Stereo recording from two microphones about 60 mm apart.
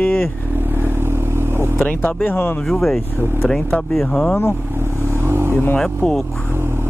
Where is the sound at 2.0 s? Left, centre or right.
Left.